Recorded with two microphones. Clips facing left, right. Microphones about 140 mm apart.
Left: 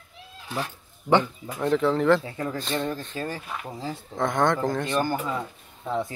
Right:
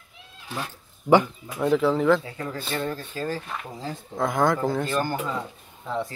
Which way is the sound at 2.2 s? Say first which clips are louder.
Left 2 dB; 30° left (ahead or behind).